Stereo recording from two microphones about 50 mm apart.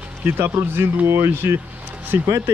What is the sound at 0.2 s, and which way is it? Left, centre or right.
Speech, right.